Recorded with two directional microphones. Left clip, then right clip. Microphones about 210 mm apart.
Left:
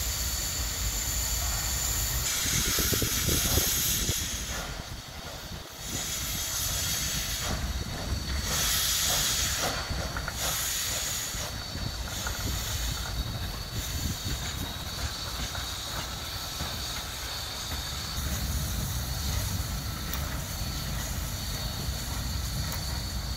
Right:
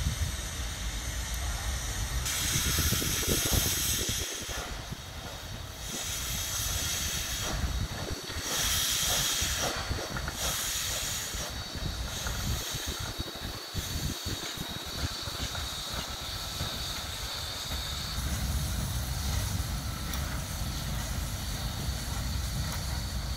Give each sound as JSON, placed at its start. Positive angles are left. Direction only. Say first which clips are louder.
{"t": 2.3, "sound": "hiss", "louder": "left 1 dB", "side_deg": -5}
{"t": 6.7, "sound": "vehicle", "louder": "left 2 dB", "side_deg": -10}
{"t": 8.5, "sound": "hiss", "louder": "left 1 dB", "side_deg": -10}